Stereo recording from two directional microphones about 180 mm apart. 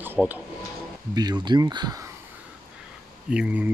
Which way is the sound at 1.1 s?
25° right (ahead or behind).